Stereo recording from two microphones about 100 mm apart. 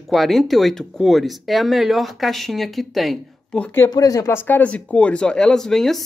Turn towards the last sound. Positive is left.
turn(degrees=5)  # may be behind; listen again after turning